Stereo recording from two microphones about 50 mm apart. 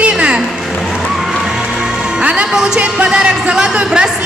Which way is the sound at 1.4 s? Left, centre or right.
Centre.